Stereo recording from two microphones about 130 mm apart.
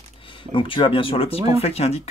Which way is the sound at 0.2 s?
40° left (ahead or behind).